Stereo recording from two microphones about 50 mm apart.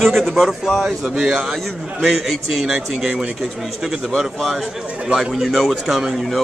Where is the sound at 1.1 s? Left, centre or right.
Centre.